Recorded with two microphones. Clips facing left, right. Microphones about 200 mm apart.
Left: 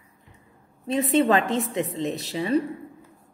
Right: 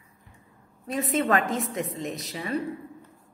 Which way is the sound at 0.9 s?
30° left (ahead or behind).